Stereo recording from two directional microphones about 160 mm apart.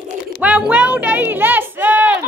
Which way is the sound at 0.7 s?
10° right (ahead or behind).